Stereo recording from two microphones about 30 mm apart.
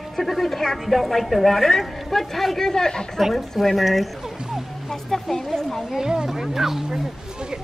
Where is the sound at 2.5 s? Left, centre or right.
Centre.